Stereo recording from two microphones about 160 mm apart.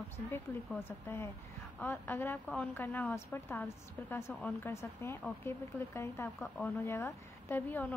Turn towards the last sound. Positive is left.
turn(degrees=15)  # may be behind; listen again after turning